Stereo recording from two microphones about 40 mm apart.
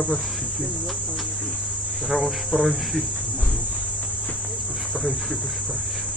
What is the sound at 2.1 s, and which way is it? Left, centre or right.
Speech, centre.